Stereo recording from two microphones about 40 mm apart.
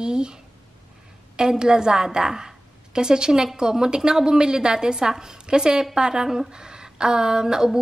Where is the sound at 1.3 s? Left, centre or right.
Centre.